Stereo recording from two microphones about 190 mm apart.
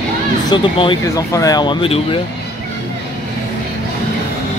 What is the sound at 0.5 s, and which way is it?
Speech, 25° left (ahead or behind).